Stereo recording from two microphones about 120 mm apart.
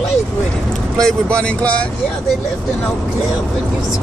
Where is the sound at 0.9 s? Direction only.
5° left (ahead or behind).